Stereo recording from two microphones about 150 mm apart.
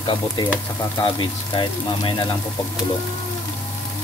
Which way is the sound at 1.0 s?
35° left (ahead or behind).